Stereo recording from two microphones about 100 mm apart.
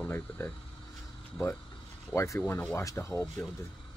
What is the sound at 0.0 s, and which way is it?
Speech, 20° left (ahead or behind).